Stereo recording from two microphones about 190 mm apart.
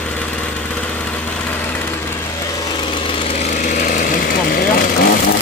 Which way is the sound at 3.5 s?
40° left (ahead or behind).